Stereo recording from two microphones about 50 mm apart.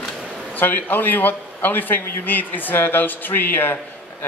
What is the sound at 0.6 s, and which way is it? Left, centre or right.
A woman's voice, left.